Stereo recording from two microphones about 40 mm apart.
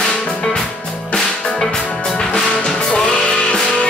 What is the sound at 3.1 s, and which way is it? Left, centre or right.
Music, left.